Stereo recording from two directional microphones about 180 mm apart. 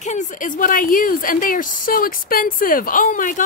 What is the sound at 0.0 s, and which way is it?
Speech, 40° left (ahead or behind).